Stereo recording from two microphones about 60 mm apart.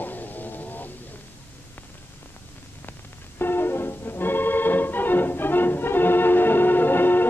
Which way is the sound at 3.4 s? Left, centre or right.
Left.